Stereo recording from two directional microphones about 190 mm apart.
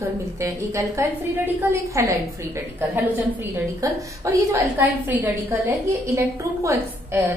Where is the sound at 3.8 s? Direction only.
15° right (ahead or behind).